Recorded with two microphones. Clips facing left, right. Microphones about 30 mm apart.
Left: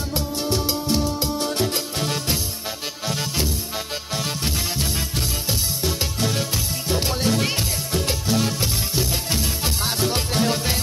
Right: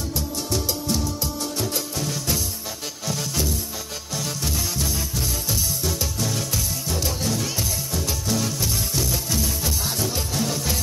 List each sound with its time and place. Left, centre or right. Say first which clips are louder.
0.1 s music: left 4 dB; left
3.1 s music: left 1 dB; left